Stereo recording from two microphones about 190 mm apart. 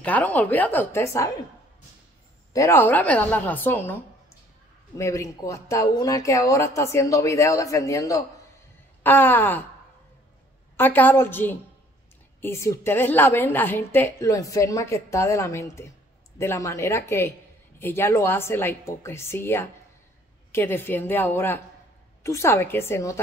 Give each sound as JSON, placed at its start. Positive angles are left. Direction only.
{"t": 0.0, "sound": "a woman's voice", "side_deg": 10}
{"t": 2.5, "sound": "a woman's voice", "side_deg": 15}
{"t": 10.8, "sound": "a woman's voice", "side_deg": 10}